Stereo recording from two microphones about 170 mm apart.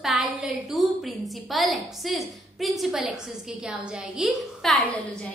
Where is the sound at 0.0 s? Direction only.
5° right (ahead or behind).